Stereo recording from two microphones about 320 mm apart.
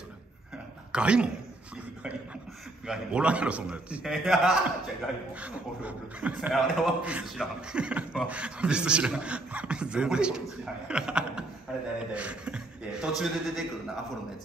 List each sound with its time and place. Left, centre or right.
0.9 s a man's voice: centre
2.9 s a man's voice: centre